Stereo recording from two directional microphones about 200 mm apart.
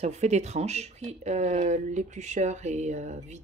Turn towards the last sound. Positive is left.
turn(degrees=-35)  # may be behind; listen again after turning